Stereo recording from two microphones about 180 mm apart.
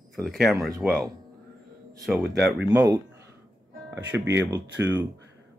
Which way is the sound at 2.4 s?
5° right (ahead or behind).